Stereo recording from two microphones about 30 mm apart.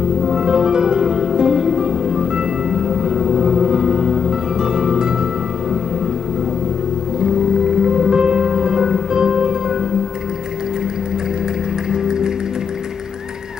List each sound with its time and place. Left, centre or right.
0.2 s music: right
4.0 s music: centre
4.6 s music: right
7.2 s music: right
11.9 s music: right